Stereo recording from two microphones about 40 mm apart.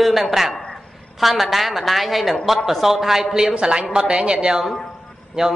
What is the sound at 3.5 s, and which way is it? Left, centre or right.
A woman's voice, right.